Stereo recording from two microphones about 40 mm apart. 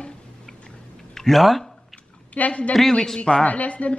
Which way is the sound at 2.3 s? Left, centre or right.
Left.